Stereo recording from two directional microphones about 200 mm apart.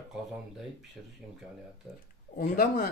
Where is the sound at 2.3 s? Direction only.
45° left (ahead or behind).